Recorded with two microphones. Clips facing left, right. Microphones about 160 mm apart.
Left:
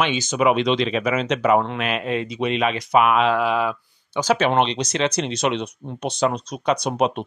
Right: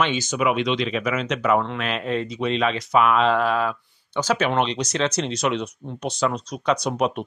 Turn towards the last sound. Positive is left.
turn(degrees=20)  # may be behind; listen again after turning